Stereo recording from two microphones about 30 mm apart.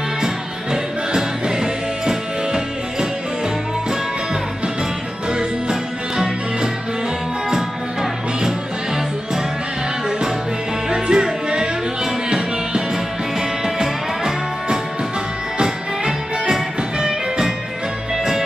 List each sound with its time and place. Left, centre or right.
0.2 s music: centre
5.3 s music: right
10.9 s music: right